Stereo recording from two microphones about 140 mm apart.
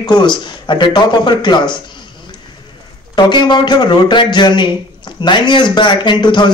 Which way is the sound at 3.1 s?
30° left (ahead or behind).